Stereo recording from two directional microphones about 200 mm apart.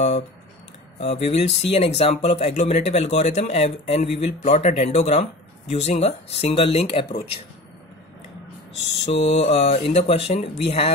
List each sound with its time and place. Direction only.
0.9 s speech: 30° left (ahead or behind)
9.0 s speech: 30° left (ahead or behind)